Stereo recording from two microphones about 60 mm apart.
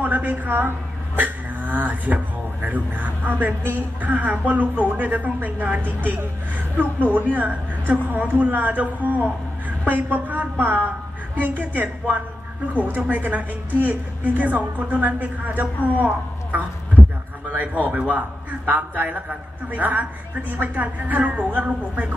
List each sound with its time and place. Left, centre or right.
0.0 s speech: right
17.5 s speech: right